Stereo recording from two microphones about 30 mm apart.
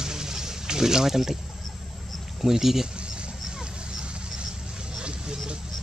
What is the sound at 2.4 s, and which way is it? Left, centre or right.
Speech, centre.